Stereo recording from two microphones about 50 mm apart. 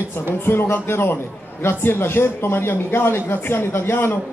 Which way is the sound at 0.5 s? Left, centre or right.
Left.